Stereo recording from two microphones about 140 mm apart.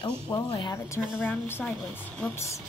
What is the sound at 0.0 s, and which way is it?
Speech, 35° left (ahead or behind).